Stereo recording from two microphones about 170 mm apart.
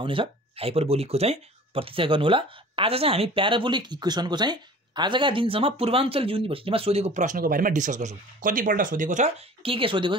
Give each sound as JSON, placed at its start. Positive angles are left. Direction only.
{"t": 0.0, "sound": "speech", "side_deg": -30}
{"t": 9.6, "sound": "speech", "side_deg": -30}